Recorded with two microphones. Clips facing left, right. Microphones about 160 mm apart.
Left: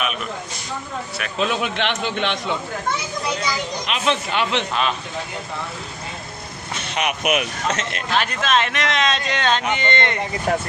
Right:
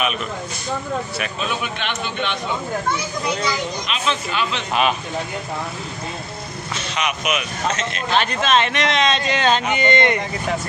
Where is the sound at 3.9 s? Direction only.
65° left (ahead or behind).